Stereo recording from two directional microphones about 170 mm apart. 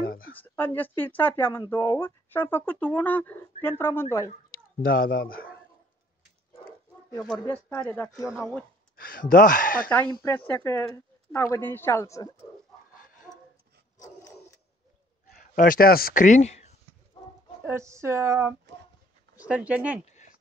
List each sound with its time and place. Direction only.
0.0 s a sound: 60° left (ahead or behind)
0.4 s speech: 10° left (ahead or behind)
4.8 s speech: 60° left (ahead or behind)
7.5 s speech: 10° left (ahead or behind)
8.3 s speech: centre (ahead or behind)
8.9 s speech: 60° left (ahead or behind)
10.2 s speech: 10° left (ahead or behind)
13.9 s dog: 20° left (ahead or behind)
15.5 s speech: 55° left (ahead or behind); by 16.7 s 40° left (ahead or behind)
17.6 s speech: 15° right (ahead or behind)